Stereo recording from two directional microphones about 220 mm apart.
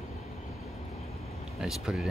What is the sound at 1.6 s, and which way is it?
Speech, centre (ahead or behind).